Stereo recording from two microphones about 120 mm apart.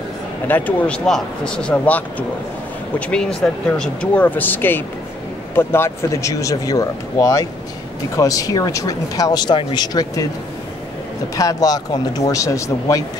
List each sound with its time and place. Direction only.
0.5 s speech: 15° left (ahead or behind); by 9.6 s 35° left (ahead or behind)
9.6 s speech: 50° left (ahead or behind)
11.3 s speech: 30° left (ahead or behind)